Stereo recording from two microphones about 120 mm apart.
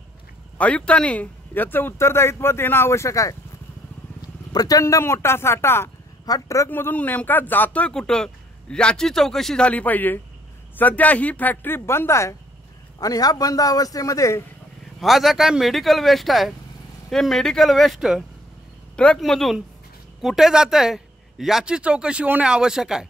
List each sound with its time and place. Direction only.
0.6 s speech: 10° left (ahead or behind); by 3.3 s 25° left (ahead or behind)
4.5 s speech: 30° left (ahead or behind)
6.7 s a man's voice: 15° left (ahead or behind)
15.0 s speech: centre (ahead or behind)